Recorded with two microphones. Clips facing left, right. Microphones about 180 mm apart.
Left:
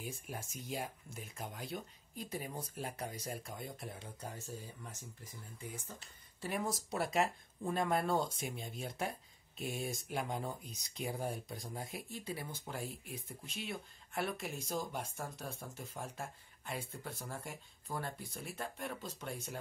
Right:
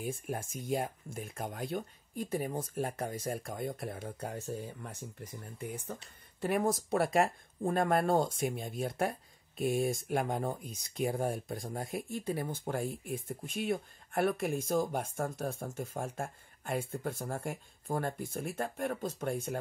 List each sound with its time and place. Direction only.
0.0 s speech: 55° right (ahead or behind)
5.6 s speech: 60° right (ahead or behind)